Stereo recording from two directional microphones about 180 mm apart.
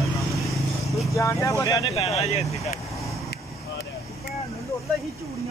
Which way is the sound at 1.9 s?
35° left (ahead or behind).